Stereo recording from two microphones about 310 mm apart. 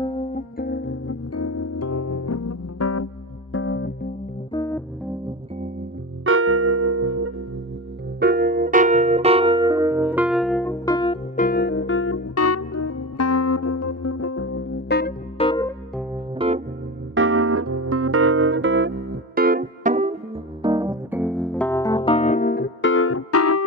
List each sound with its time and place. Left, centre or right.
0.0 s music: centre; by 3.1 s left
3.5 s music: left
4.5 s music: centre
6.2 s music: right
8.2 s music: right; by 11.1 s centre
11.3 s keyboard: left
15.3 s music: centre
16.3 s music: centre
17.1 s music: right
20.6 s piano: centre; by 23.6 s left